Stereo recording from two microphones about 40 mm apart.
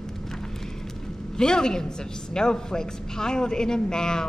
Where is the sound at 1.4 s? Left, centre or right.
Centre.